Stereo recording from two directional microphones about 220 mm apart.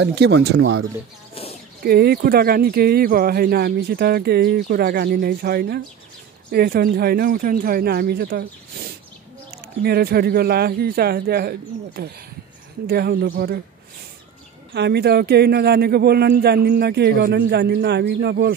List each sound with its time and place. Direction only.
0.0 s speech: 50° right (ahead or behind)
1.8 s speech: 45° right (ahead or behind)
14.7 s speech: 50° right (ahead or behind)